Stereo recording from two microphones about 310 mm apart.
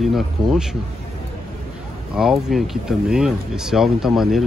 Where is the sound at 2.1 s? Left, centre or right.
Centre.